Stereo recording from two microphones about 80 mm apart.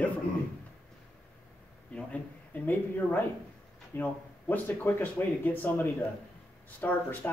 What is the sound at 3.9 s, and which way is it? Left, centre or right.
Speech, left.